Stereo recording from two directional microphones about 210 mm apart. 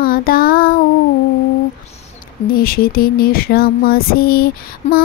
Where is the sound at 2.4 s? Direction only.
45° left (ahead or behind).